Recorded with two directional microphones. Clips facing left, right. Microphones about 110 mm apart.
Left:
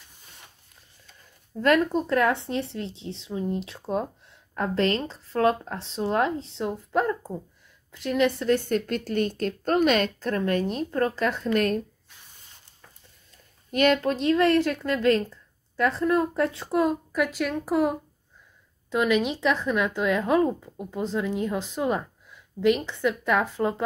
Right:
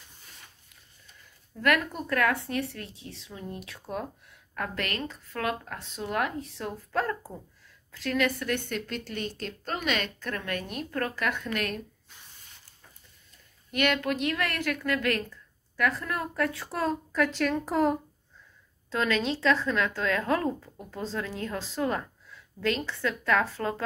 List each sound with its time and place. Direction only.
1.6 s a woman's voice: 30° left (ahead or behind)
13.7 s speech: 35° left (ahead or behind); by 23.8 s 20° left (ahead or behind)